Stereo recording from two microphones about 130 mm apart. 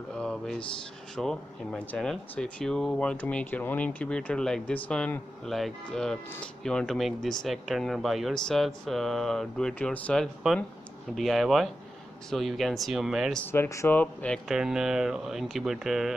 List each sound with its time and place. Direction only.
0.1 s a sound: 5° left (ahead or behind)
1.1 s speech: 5° left (ahead or behind)
13.5 s speech: 20° left (ahead or behind)
14.5 s speech: 5° right (ahead or behind)